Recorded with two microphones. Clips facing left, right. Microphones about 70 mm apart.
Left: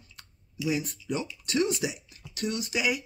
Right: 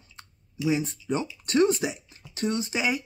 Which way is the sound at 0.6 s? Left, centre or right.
Right.